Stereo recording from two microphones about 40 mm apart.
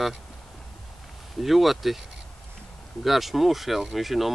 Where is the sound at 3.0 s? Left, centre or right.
Centre.